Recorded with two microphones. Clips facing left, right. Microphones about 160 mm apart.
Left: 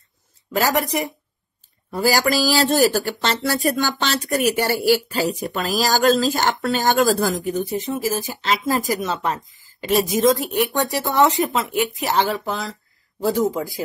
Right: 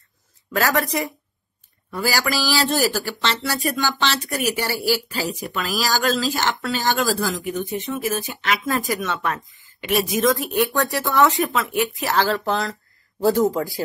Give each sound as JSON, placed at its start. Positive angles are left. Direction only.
{"t": 0.5, "sound": "speech", "side_deg": 25}
{"t": 2.0, "sound": "speech", "side_deg": 45}
{"t": 12.4, "sound": "speech", "side_deg": 0}